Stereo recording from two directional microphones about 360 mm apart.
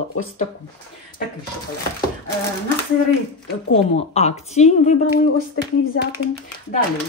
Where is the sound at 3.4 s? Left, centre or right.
Centre.